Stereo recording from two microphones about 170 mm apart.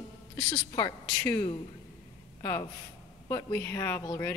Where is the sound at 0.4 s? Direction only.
25° left (ahead or behind).